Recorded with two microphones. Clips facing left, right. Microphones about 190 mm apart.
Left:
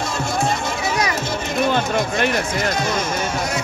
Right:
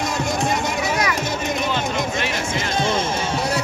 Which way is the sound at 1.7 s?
50° left (ahead or behind).